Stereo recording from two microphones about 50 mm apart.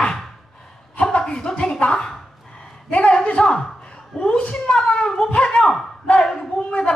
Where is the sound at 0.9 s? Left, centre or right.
Left.